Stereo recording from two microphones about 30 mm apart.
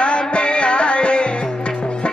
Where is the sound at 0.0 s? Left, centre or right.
Left.